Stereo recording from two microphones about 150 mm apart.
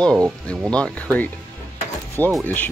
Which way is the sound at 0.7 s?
5° left (ahead or behind).